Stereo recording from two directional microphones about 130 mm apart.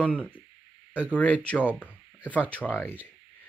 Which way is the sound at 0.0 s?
10° left (ahead or behind).